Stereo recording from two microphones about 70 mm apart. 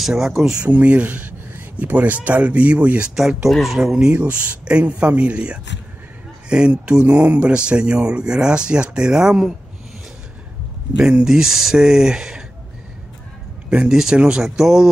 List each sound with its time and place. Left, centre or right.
0.0 s speech: centre
0.7 s speech: right
3.4 s speech: centre
3.9 s speech: centre
11.0 s speech: centre
13.7 s speech: centre